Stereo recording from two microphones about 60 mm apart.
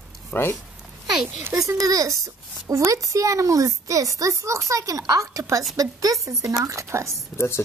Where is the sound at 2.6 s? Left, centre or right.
Right.